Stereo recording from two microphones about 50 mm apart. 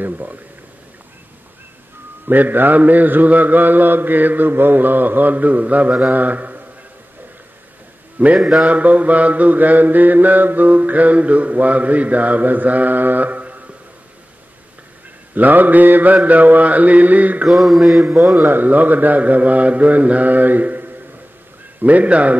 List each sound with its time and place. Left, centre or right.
0.0 s mantra: right
2.2 s mantra: right
8.4 s mantra: centre
8.6 s mantra: right
15.3 s mantra: right
17.5 s mantra: centre
18.4 s mantra: right